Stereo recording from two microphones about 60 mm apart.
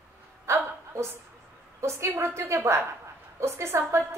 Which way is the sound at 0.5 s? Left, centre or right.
Right.